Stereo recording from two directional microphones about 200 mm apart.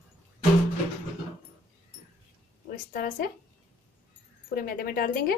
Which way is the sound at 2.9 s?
45° left (ahead or behind).